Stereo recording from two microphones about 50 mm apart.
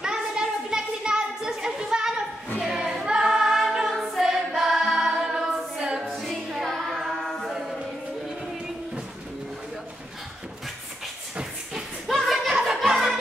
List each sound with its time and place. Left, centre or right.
0.0 s a sound: centre
2.6 s music: centre
4.2 s choir: centre
5.8 s music: centre
6.0 s music: centre
7.4 s music: centre
12.3 s a sound: centre
12.9 s music: centre